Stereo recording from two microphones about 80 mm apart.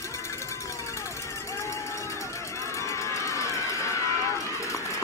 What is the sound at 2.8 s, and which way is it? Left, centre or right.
Run, left.